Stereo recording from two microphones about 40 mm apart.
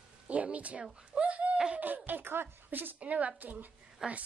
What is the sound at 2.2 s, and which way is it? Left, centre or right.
Speech, right.